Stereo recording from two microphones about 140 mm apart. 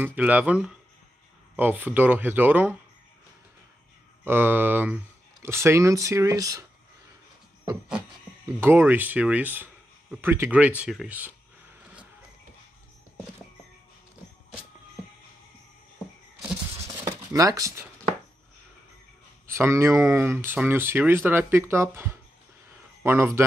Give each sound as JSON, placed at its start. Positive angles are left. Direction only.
{"t": 0.0, "sound": "speech", "side_deg": -10}
{"t": 4.2, "sound": "speech", "side_deg": -15}
{"t": 8.5, "sound": "speech", "side_deg": -15}
{"t": 17.0, "sound": "a sound", "side_deg": -25}
{"t": 19.4, "sound": "speech", "side_deg": -20}